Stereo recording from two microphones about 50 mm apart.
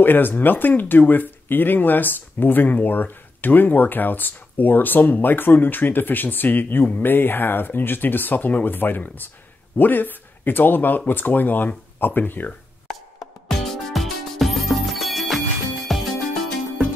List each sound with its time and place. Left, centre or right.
0.0 s speech: left
13.5 s music: centre